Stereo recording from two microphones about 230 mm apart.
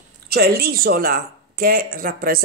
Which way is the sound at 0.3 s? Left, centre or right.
Right.